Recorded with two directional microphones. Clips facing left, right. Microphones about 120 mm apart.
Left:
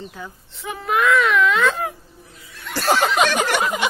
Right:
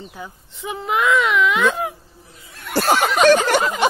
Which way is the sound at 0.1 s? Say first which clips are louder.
Right 1 dB; 15° right (ahead or behind).